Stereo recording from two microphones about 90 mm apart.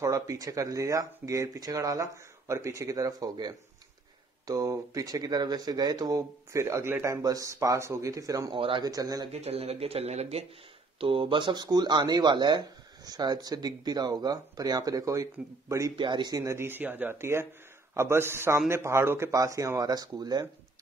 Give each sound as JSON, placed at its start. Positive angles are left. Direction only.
{"t": 0.0, "sound": "speech", "side_deg": -40}
{"t": 8.5, "sound": "speech", "side_deg": -75}
{"t": 8.8, "sound": "speech", "side_deg": -45}
{"t": 9.5, "sound": "speech", "side_deg": -90}
{"t": 11.0, "sound": "speech", "side_deg": -85}
{"t": 16.0, "sound": "speech", "side_deg": -55}
{"t": 16.4, "sound": "speech", "side_deg": -25}